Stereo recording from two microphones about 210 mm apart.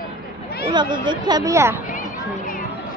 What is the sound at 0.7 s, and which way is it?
Speech, 20° right (ahead or behind).